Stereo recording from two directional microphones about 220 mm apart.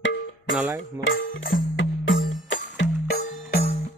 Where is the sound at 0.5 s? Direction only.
10° right (ahead or behind).